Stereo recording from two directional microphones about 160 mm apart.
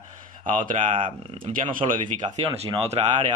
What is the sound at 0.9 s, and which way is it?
Speech, 30° right (ahead or behind).